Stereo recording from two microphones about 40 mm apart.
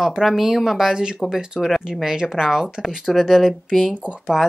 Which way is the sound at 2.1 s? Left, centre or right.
Centre.